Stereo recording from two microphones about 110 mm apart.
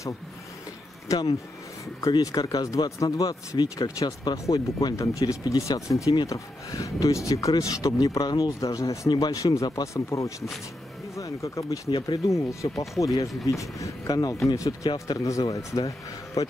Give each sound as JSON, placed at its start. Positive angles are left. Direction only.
{"t": 2.0, "sound": "speech", "side_deg": 35}